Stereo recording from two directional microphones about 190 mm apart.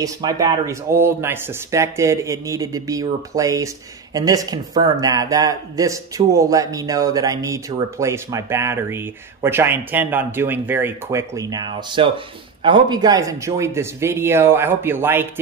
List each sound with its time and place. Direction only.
0.0 s speech: 20° right (ahead or behind)